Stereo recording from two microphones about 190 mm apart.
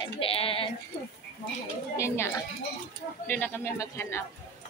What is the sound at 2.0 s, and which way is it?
Speech, 15° left (ahead or behind).